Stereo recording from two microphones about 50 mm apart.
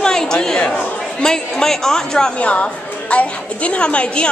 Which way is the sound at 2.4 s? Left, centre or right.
Left.